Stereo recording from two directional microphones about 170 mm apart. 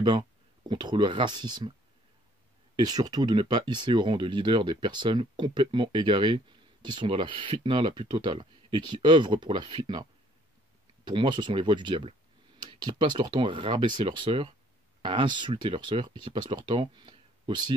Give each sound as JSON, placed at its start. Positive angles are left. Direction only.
{"t": 0.7, "sound": "speech", "side_deg": -25}
{"t": 2.7, "sound": "speech", "side_deg": -25}
{"t": 11.1, "sound": "speech", "side_deg": -25}